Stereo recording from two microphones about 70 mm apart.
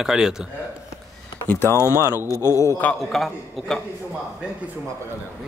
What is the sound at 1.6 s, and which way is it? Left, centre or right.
A man's voice, left.